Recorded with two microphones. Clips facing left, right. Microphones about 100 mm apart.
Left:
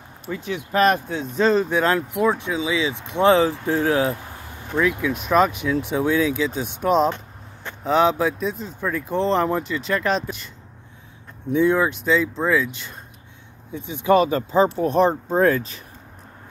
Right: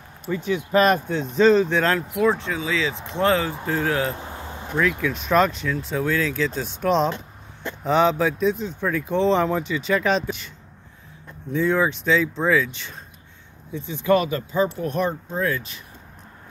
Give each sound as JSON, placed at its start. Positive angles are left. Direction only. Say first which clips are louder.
{"t": 0.3, "sound": "speech", "louder": "right 4 dB", "side_deg": 0}
{"t": 4.1, "sound": "a sound", "louder": "left 1 dB", "side_deg": -25}
{"t": 4.7, "sound": "speech", "louder": "left 2 dB", "side_deg": 5}
{"t": 11.5, "sound": "speech", "louder": "left 2 dB", "side_deg": 10}
{"t": 13.8, "sound": "speech", "louder": "left 3 dB", "side_deg": 20}